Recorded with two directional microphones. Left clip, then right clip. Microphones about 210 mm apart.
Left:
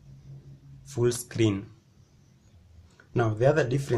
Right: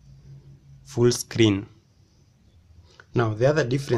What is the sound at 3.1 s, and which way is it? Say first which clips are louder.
Speech: right 2 dB; 25° right (ahead or behind).